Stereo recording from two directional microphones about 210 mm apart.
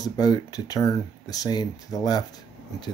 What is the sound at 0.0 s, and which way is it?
Speech, 20° left (ahead or behind).